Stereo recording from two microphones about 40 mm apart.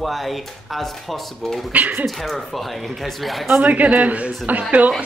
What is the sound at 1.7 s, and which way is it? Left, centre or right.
Speech, right.